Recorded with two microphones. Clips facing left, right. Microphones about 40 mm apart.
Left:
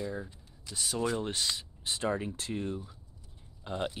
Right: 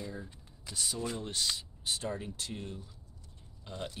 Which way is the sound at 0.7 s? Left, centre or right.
Centre.